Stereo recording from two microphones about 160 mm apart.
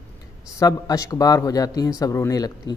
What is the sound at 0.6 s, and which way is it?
A man's voice, 20° left (ahead or behind).